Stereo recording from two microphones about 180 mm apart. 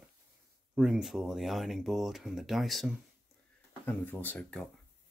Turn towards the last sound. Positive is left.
turn(degrees=5)  # may be behind; listen again after turning